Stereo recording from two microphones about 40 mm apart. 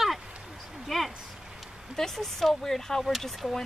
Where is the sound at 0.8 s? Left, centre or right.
Centre.